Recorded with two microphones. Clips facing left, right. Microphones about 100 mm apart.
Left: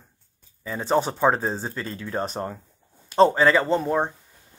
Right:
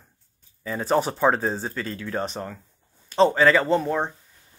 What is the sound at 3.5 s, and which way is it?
Speech, 5° left (ahead or behind).